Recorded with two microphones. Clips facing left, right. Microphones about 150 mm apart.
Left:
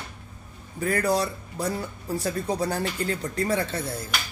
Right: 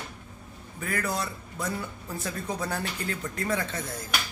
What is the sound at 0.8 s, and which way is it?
Speech, 35° left (ahead or behind).